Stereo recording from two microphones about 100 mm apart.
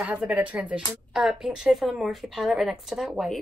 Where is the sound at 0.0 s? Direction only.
15° right (ahead or behind).